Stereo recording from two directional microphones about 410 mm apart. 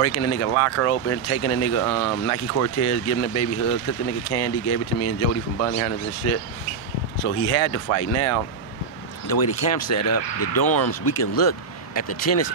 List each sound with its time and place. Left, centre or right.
0.0 s speech: left
9.4 s speech: left